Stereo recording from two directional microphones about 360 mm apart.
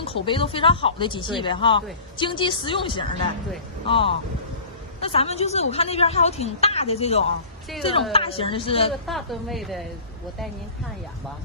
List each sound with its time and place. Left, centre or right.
0.0 s a woman's voice: centre
9.0 s a woman's voice: centre